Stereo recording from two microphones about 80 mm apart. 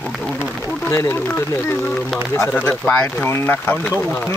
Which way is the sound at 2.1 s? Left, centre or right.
Centre.